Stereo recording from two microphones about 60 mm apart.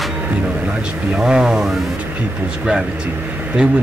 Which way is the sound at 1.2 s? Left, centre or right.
Centre.